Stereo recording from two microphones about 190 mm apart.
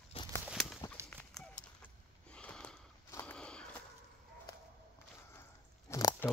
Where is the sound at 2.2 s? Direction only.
5° left (ahead or behind).